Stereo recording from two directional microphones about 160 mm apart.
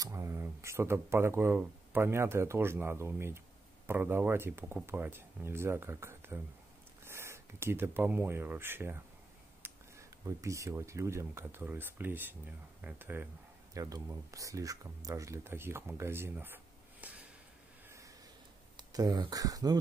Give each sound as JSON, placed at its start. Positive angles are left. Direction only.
{"t": 0.0, "sound": "speech", "side_deg": -15}
{"t": 13.7, "sound": "speech", "side_deg": -20}
{"t": 17.8, "sound": "a sound", "side_deg": -20}
{"t": 18.8, "sound": "speech", "side_deg": -25}